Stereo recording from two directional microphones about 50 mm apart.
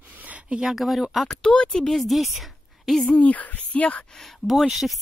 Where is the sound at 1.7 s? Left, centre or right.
Centre.